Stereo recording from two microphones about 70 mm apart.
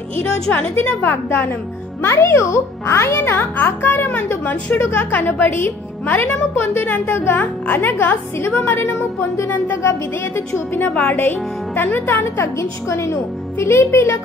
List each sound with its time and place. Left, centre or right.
0.2 s speech: left
2.0 s a child's voice: left
12.5 s a woman's voice: left